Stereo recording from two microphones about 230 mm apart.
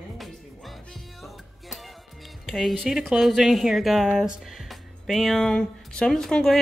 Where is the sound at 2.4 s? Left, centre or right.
Centre.